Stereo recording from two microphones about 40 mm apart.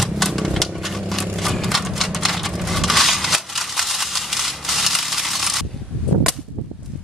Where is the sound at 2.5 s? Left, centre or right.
Centre.